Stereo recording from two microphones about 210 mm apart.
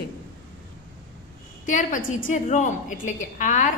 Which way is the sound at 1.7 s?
40° left (ahead or behind).